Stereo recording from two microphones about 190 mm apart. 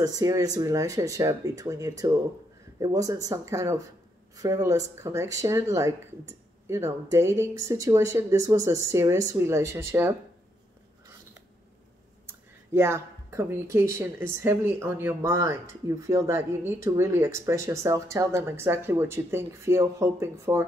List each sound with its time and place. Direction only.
0.0 s speech: 20° right (ahead or behind)
12.3 s speech: 15° right (ahead or behind)